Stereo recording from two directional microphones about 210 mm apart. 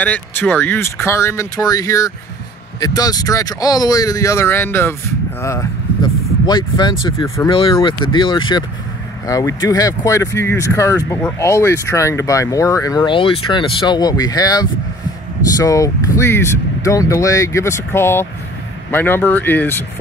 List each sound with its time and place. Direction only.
0.0 s speech: 10° left (ahead or behind)